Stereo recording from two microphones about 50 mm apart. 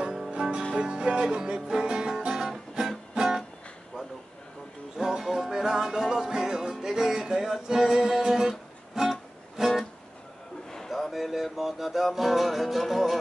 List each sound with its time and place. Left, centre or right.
0.0 s music: centre
0.3 s music: centre
4.9 s music: centre
10.9 s music: centre